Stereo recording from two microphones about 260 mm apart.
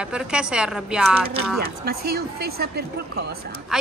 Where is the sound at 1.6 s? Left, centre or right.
Right.